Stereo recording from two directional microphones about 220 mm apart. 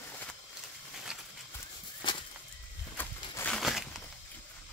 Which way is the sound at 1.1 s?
5° right (ahead or behind).